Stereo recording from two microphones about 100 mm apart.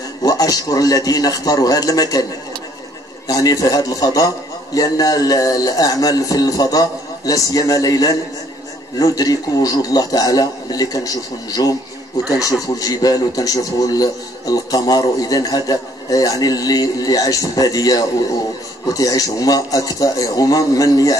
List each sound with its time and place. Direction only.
0.2 s a man's voice: 40° left (ahead or behind)
3.3 s a man's voice: 35° left (ahead or behind)